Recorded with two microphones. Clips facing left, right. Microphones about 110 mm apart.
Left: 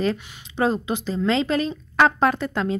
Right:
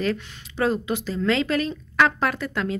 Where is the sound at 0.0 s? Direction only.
20° left (ahead or behind).